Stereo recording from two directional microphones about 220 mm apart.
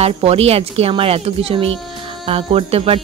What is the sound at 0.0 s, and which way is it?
Speech, 30° right (ahead or behind).